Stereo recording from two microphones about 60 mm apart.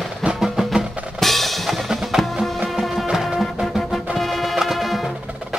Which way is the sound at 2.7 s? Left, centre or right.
Centre.